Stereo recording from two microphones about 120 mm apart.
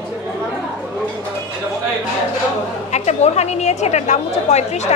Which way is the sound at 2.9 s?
65° left (ahead or behind).